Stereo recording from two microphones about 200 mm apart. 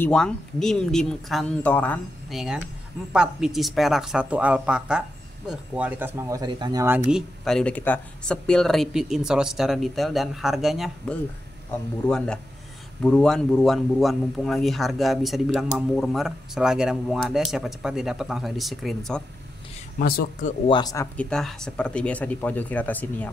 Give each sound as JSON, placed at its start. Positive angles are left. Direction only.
{"t": 0.0, "sound": "speech", "side_deg": 5}
{"t": 7.1, "sound": "speech", "side_deg": 0}
{"t": 20.0, "sound": "speech", "side_deg": 45}
{"t": 20.6, "sound": "speech", "side_deg": 20}
{"t": 21.3, "sound": "speech", "side_deg": 0}